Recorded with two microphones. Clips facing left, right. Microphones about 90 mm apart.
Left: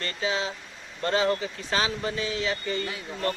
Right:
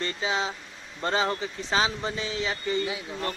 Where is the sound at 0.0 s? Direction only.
25° right (ahead or behind).